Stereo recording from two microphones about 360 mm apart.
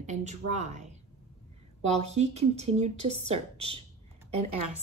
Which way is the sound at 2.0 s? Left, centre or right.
Centre.